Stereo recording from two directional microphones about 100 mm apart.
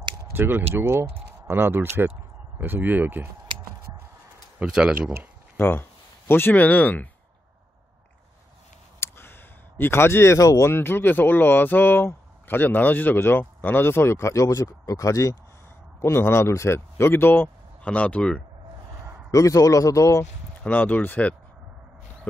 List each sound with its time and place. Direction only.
0.3 s speech: 20° right (ahead or behind)
4.6 s speech: 10° right (ahead or behind)
5.6 s speech: 20° left (ahead or behind)
9.0 s a sound: 25° left (ahead or behind)
10.7 s speech: 20° left (ahead or behind)
18.9 s a sound: 25° right (ahead or behind)
19.3 s speech: 35° left (ahead or behind)
20.6 s speech: 15° left (ahead or behind)